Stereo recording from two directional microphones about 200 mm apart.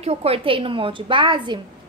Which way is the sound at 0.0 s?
30° right (ahead or behind).